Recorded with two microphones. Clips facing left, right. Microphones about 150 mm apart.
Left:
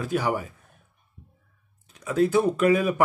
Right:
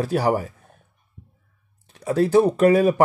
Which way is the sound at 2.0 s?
35° right (ahead or behind).